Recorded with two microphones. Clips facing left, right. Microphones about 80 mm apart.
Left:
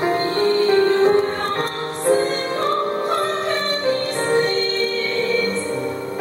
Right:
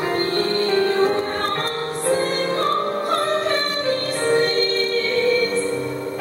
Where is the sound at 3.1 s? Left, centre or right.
Centre.